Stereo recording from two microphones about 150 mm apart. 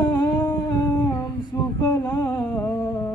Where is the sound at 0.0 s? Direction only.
25° left (ahead or behind).